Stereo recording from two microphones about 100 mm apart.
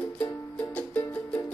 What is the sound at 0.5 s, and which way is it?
Music, 15° left (ahead or behind).